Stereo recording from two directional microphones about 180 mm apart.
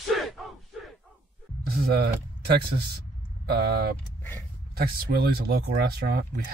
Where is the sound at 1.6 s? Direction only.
60° right (ahead or behind).